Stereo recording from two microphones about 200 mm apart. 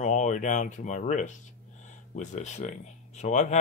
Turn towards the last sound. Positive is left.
turn(degrees=35)  # may be behind; listen again after turning